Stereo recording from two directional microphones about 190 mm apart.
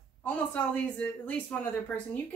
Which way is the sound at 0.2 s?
10° left (ahead or behind).